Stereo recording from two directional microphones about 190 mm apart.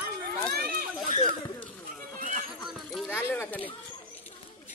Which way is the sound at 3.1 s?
10° left (ahead or behind).